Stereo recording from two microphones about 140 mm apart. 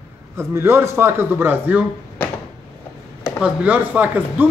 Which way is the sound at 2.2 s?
15° left (ahead or behind).